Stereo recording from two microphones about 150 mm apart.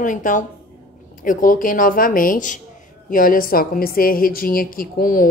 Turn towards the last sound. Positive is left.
turn(degrees=65)  # may be behind; listen again after turning